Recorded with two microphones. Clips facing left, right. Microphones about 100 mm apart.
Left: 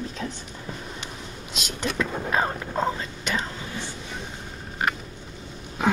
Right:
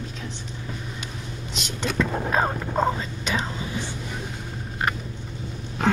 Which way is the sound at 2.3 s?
10° right (ahead or behind).